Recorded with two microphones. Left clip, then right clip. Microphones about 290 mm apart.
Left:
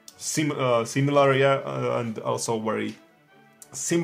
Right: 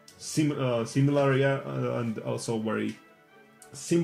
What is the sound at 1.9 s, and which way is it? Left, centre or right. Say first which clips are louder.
Speech: left 6 dB; left.